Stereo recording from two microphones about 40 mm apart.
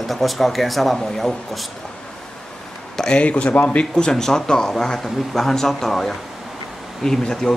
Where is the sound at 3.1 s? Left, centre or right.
Left.